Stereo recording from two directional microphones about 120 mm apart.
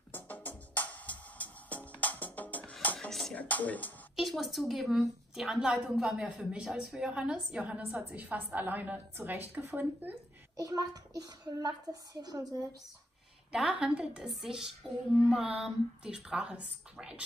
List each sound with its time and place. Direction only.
0.1 s music: 15° left (ahead or behind)
3.1 s speech: 5° left (ahead or behind)
4.2 s a woman's voice: centre (ahead or behind); by 10.1 s 20° right (ahead or behind)
10.6 s a child's voice: 30° right (ahead or behind)
13.5 s a woman's voice: 5° right (ahead or behind)